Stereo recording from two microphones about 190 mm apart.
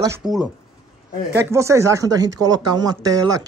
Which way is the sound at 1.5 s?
15° right (ahead or behind).